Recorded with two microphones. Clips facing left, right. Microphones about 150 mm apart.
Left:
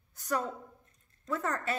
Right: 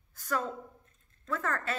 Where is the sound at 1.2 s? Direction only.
15° left (ahead or behind).